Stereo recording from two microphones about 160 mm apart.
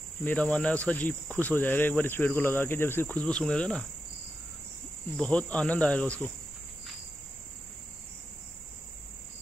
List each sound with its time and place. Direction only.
0.2 s speech: 10° left (ahead or behind)
5.1 s speech: 10° left (ahead or behind)